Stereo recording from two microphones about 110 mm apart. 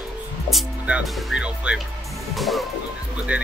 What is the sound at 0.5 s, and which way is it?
Music, 5° right (ahead or behind).